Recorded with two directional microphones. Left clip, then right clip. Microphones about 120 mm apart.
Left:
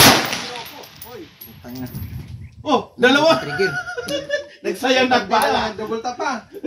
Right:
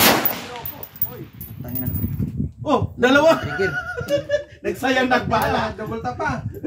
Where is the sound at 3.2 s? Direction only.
25° right (ahead or behind).